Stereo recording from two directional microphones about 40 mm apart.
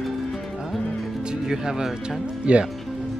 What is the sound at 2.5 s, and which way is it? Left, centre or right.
Speech, right.